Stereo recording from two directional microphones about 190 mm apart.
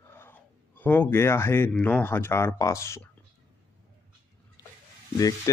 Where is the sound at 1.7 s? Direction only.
5° left (ahead or behind).